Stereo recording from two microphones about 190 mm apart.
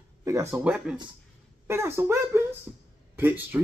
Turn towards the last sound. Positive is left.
turn(degrees=-10)  # may be behind; listen again after turning